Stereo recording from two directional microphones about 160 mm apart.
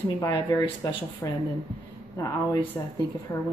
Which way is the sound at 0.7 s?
30° left (ahead or behind).